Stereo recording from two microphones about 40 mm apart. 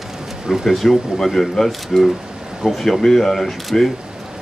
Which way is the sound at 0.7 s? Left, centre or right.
Centre.